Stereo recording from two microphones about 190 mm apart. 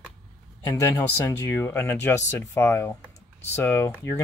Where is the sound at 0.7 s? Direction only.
15° left (ahead or behind).